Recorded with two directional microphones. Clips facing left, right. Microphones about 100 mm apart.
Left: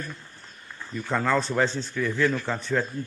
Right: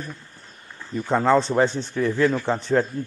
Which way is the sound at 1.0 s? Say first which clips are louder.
Right 6 dB; 25° right (ahead or behind).